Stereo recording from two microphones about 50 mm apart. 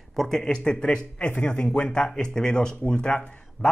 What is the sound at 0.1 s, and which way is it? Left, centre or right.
Speech, centre.